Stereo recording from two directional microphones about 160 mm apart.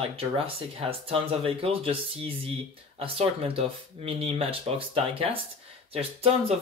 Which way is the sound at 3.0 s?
35° right (ahead or behind).